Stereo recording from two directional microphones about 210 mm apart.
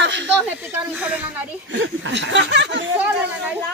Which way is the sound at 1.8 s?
60° right (ahead or behind).